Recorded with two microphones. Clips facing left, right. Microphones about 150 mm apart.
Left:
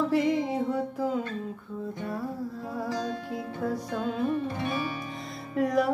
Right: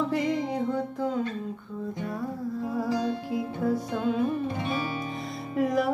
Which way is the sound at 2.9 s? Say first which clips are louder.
Right 3 dB; 5° right (ahead or behind).